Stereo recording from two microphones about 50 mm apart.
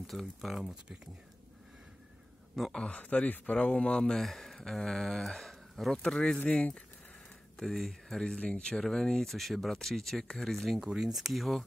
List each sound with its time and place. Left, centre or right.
0.0 s speech: centre
0.6 s speech: centre
2.7 s speech: left
3.5 s speech: centre
6.5 s speech: centre
7.5 s speech: centre
8.4 s speech: left
8.8 s speech: centre
10.5 s speech: centre